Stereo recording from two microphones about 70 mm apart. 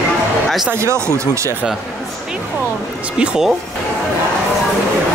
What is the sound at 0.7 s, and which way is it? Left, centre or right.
Speech, right.